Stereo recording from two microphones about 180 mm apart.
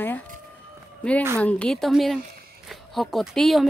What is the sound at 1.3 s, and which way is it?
Speech, 5° left (ahead or behind).